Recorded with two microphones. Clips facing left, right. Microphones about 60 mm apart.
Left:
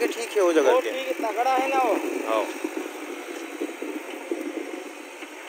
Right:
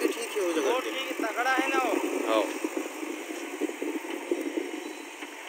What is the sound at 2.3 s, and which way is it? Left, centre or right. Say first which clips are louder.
Speech: left 1 dB; centre.